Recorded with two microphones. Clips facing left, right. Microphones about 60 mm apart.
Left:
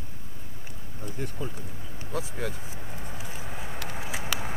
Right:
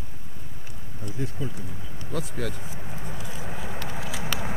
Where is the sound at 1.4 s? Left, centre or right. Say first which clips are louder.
Right 1 dB; left.